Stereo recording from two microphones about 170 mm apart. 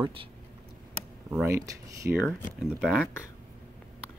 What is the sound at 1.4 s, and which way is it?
Speech, 20° right (ahead or behind).